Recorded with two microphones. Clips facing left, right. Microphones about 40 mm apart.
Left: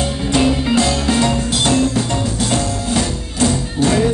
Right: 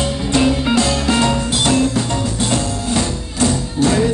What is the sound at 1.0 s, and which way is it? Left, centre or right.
Music, right.